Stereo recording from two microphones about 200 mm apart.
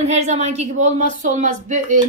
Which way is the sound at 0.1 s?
35° right (ahead or behind).